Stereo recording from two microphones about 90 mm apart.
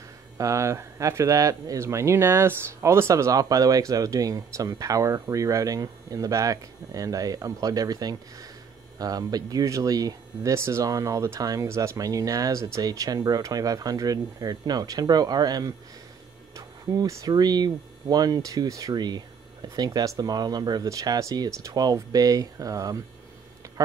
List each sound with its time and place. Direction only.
0.4 s speech: 35° right (ahead or behind)
16.5 s a sound: 40° right (ahead or behind)
17.3 s speech: 50° right (ahead or behind)